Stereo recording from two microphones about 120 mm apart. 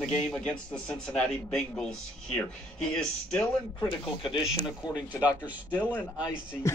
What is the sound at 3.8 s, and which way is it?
Speech, 45° left (ahead or behind).